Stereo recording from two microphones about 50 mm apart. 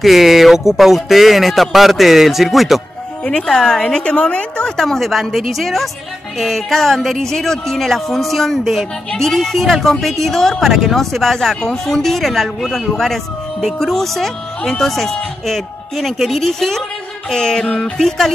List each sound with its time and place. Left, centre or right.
0.0 s speech: centre
3.4 s a woman's voice: centre
4.7 s a woman's voice: centre